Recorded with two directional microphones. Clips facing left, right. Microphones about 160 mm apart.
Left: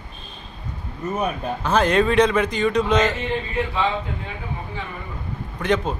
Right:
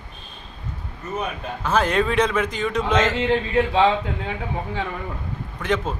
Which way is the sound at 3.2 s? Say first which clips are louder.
Right 5 dB; 90° right.